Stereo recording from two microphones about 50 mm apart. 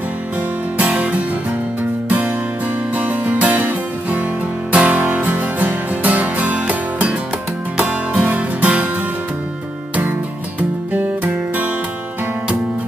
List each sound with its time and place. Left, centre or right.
0.7 s music: right